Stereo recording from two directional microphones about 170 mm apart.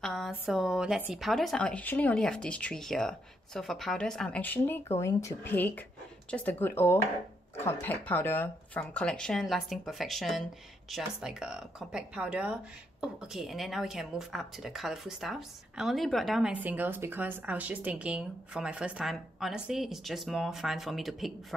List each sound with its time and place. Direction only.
0.0 s speech: centre (ahead or behind)